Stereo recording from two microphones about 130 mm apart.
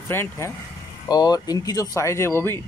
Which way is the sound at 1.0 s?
30° left (ahead or behind).